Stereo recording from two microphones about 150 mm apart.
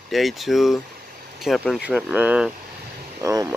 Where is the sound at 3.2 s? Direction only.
20° right (ahead or behind).